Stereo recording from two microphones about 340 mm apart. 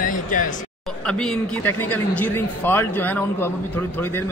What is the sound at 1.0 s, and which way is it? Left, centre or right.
Speech, centre.